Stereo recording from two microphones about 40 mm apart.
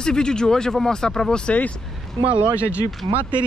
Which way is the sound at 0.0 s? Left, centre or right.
Centre.